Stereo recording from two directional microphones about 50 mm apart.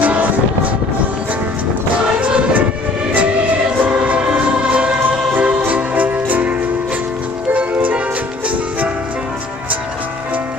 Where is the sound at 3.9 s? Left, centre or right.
Right.